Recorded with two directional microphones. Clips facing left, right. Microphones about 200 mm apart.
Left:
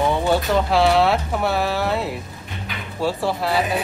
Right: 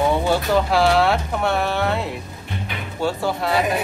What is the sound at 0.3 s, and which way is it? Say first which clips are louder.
Speech: even; centre (ahead or behind).